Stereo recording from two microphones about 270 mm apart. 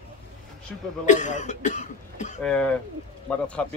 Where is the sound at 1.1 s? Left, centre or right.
Left.